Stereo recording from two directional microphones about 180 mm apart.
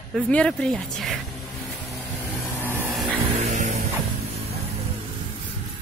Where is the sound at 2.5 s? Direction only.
15° right (ahead or behind).